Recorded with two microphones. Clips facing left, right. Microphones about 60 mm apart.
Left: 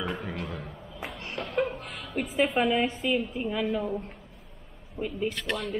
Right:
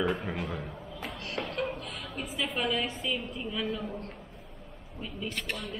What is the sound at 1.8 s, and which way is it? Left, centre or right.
Chuckle, left.